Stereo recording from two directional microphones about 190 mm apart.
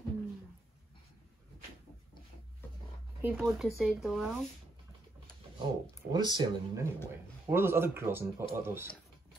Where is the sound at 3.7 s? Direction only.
Centre (ahead or behind).